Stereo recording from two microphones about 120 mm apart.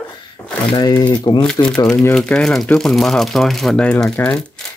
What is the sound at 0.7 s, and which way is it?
Speech, 35° left (ahead or behind).